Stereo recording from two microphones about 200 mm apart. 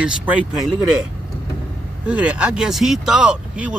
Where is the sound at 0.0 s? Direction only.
5° right (ahead or behind).